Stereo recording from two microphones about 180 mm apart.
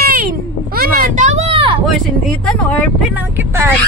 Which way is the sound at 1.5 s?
30° right (ahead or behind).